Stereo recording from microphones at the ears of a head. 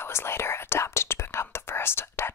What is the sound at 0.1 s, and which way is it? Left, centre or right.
Whispering, left.